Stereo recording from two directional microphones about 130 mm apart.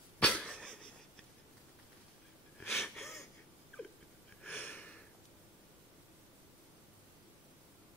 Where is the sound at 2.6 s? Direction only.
20° left (ahead or behind).